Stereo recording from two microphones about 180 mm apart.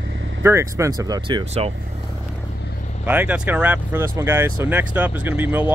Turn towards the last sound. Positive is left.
turn(degrees=-10)  # may be behind; listen again after turning